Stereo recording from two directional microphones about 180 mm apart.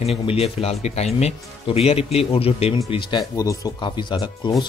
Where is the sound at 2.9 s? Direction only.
25° left (ahead or behind).